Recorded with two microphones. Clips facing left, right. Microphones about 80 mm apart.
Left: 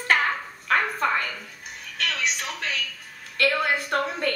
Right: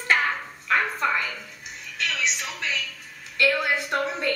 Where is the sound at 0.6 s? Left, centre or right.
Left.